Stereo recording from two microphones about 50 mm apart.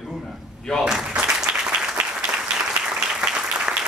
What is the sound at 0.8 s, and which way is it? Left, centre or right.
Applause, centre.